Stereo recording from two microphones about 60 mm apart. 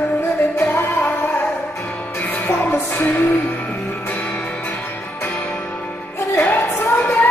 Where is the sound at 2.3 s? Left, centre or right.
Left.